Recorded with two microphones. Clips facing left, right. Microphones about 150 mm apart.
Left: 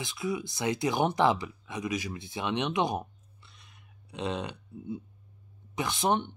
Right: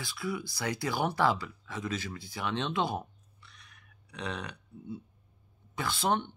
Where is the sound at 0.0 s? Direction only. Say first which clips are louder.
Left 3 dB; 20° left (ahead or behind).